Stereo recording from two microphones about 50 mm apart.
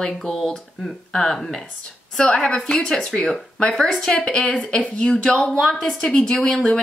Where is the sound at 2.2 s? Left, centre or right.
Left.